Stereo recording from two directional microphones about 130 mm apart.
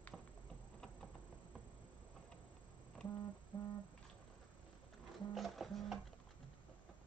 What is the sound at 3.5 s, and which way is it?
Music, 35° left (ahead or behind).